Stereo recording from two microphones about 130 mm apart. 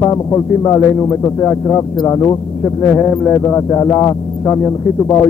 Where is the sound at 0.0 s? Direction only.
25° left (ahead or behind).